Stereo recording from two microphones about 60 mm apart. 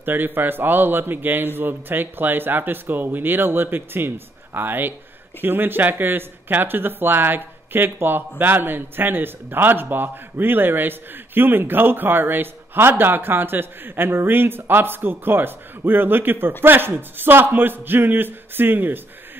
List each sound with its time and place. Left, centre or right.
0.0 s speech: right